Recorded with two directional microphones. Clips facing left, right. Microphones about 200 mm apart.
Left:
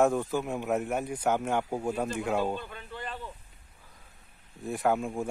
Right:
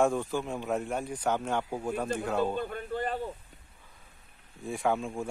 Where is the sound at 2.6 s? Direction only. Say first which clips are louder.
Right 8 dB; 45° right (ahead or behind).